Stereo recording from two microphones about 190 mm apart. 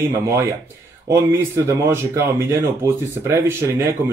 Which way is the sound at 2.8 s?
15° right (ahead or behind).